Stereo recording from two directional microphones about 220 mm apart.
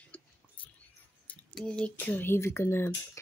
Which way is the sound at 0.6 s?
5° left (ahead or behind).